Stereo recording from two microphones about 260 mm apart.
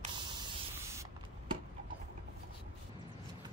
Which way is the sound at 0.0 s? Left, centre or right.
Centre.